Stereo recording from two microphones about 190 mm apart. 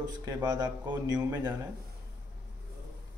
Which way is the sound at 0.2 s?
20° right (ahead or behind).